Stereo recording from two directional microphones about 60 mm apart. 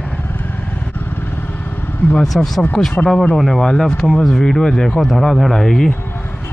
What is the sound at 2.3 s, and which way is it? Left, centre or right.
Speech, centre.